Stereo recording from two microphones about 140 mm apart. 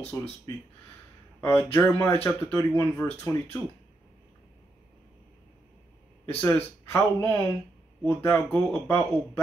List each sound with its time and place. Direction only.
0.1 s speech: 25° left (ahead or behind)
1.4 s speech: 15° left (ahead or behind)
6.2 s speech: 15° left (ahead or behind)